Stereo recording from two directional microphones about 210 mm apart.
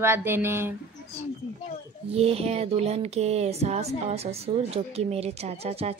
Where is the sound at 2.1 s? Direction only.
30° right (ahead or behind).